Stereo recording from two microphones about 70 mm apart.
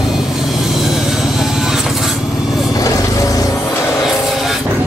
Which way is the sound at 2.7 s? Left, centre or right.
Left.